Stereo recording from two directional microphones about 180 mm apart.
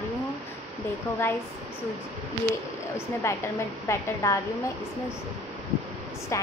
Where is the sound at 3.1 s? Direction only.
15° left (ahead or behind).